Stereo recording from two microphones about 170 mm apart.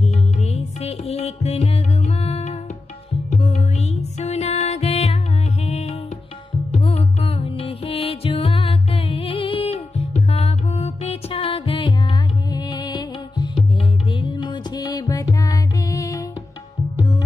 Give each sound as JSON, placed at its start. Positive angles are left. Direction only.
{"t": 0.0, "sound": "music", "side_deg": 40}